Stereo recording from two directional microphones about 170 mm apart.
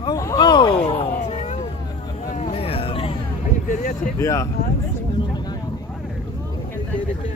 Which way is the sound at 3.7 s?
55° left (ahead or behind).